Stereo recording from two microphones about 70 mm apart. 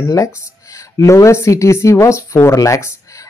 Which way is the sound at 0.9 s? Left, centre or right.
Left.